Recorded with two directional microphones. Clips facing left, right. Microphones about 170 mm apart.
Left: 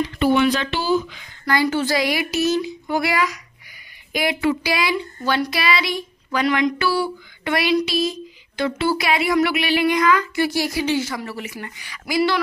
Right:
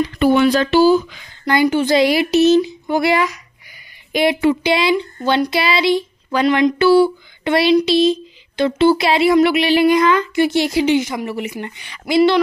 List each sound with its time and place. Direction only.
0.2 s speech: 40° right (ahead or behind)
1.4 s speech: 20° right (ahead or behind)